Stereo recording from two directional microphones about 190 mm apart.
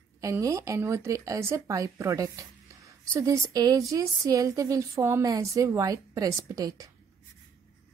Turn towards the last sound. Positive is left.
turn(degrees=-20)  # may be behind; listen again after turning